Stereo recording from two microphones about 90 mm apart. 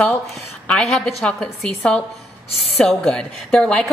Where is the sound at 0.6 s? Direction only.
5° left (ahead or behind).